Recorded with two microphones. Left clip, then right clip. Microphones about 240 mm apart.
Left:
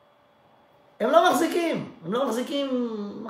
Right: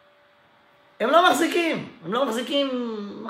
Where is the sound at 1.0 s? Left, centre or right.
Centre.